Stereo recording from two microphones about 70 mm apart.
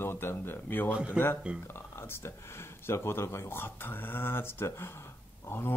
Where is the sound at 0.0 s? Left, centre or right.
Left.